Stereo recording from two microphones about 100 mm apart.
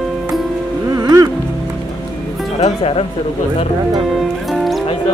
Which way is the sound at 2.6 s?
70° left (ahead or behind).